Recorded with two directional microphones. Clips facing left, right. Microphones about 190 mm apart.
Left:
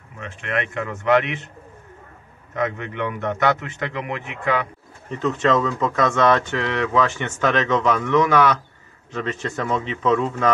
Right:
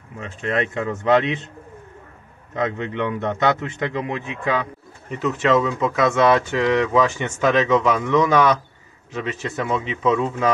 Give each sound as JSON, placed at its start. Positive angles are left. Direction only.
{"t": 0.4, "sound": "a man's voice", "side_deg": -30}
{"t": 2.5, "sound": "a man's voice", "side_deg": -25}
{"t": 5.1, "sound": "speech", "side_deg": -5}